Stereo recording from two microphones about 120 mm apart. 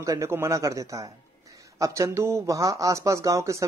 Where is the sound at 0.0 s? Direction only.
25° right (ahead or behind).